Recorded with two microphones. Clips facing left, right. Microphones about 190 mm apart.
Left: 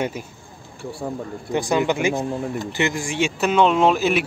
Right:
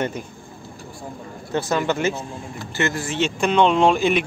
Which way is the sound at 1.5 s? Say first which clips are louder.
Left 2 dB; 15° left (ahead or behind).